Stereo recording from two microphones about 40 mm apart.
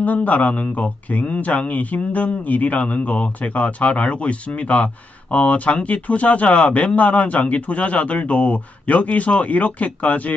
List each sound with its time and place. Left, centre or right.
0.0 s speech: left